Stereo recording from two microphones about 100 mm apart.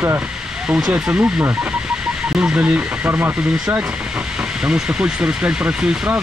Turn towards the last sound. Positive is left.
turn(degrees=-15)  # may be behind; listen again after turning